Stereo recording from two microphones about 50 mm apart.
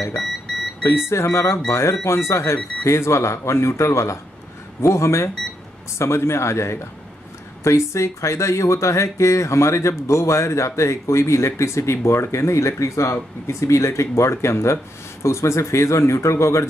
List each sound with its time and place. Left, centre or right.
0.8 s speech: left